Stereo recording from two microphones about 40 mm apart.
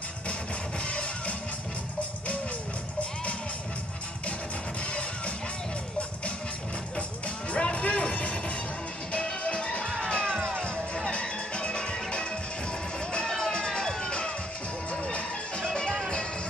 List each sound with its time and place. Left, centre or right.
0.8 s music: left
7.5 s music: left
13.3 s music: left